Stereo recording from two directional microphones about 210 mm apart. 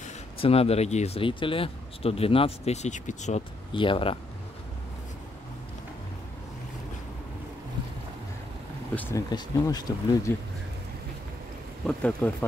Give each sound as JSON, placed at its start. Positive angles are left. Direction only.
{"t": 0.0, "sound": "speech", "side_deg": 30}
{"t": 8.9, "sound": "speech", "side_deg": 10}
{"t": 11.8, "sound": "speech", "side_deg": 5}